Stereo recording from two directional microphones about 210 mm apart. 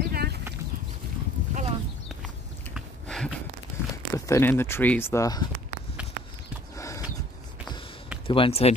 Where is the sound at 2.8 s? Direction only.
Centre (ahead or behind).